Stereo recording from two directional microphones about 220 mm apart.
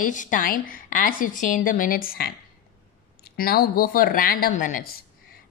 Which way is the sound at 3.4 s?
40° left (ahead or behind).